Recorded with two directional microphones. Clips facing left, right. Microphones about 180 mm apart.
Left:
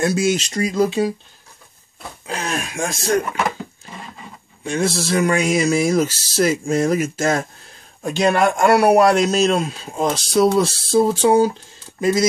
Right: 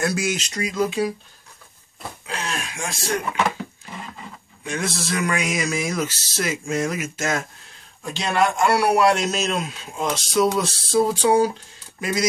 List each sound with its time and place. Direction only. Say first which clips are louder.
0.0 s speech: left 5 dB; 25° left (ahead or behind)
0.5 s a man's voice: left 5 dB; 35° left (ahead or behind)
2.2 s speech: left 5 dB; 45° left (ahead or behind)
4.6 s a man's voice: left 6 dB; 30° left (ahead or behind)
8.0 s a man's voice: left 5 dB; 50° left (ahead or behind); by 12.3 s 25° left (ahead or behind)